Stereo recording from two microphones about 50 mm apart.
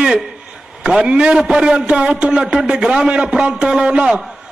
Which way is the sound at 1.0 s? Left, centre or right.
Centre.